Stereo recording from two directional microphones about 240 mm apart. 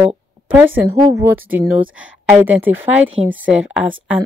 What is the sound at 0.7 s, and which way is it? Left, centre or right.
A woman's voice, centre.